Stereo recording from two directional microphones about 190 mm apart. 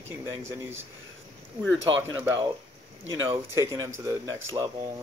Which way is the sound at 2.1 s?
15° right (ahead or behind).